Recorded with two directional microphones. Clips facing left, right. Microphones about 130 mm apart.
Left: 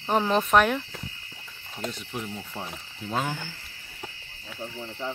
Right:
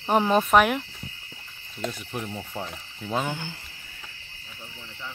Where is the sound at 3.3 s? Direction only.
20° right (ahead or behind).